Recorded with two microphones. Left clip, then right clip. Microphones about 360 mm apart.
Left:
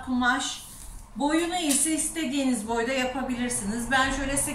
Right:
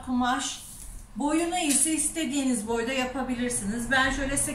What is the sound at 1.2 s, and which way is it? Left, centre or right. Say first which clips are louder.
A man's voice: left 1 dB; centre.